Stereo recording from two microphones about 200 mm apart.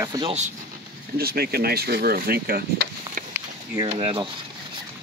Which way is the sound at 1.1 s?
50° right (ahead or behind).